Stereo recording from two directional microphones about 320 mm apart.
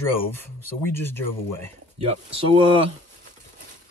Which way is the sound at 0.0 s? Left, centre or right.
Centre.